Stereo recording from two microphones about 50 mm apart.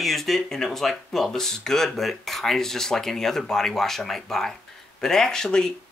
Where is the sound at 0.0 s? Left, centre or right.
Centre.